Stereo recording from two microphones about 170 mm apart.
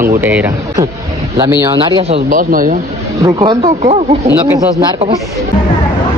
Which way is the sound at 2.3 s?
55° right (ahead or behind).